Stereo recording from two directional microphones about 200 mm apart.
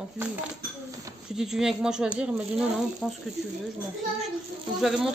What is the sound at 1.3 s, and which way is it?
A woman's voice, centre (ahead or behind).